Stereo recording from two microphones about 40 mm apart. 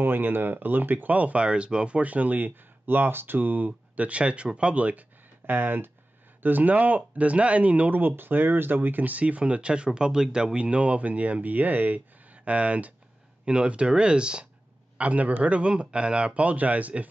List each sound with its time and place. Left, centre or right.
0.0 s speech: right
5.5 s speech: right
8.0 s speech: right
15.0 s speech: right